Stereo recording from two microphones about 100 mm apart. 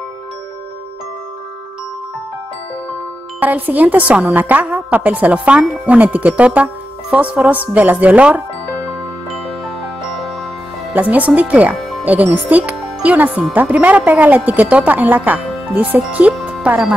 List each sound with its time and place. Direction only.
3.3 s a woman's voice: 15° right (ahead or behind)
10.0 s music: centre (ahead or behind)
10.9 s a woman's voice: 15° right (ahead or behind)